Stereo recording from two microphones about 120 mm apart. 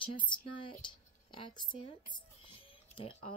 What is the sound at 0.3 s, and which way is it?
Speech, 45° left (ahead or behind).